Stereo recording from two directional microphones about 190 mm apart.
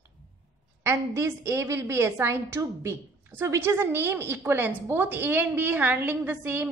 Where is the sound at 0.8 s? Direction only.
15° right (ahead or behind).